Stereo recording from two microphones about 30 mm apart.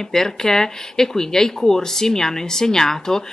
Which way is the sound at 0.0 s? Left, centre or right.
Centre.